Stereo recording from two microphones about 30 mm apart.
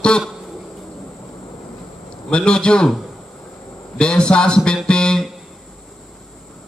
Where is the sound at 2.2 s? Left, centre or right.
Left.